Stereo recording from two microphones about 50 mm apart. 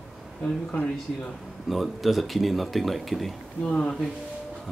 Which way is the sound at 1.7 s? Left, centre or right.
Centre.